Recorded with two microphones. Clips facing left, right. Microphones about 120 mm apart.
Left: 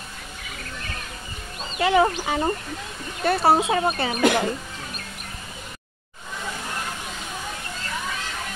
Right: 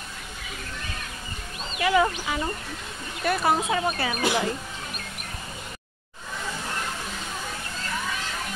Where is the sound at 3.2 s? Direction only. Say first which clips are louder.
Left 4 dB; 30° left (ahead or behind).